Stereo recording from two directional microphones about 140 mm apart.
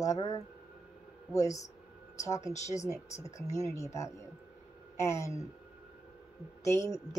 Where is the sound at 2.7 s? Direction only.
20° left (ahead or behind).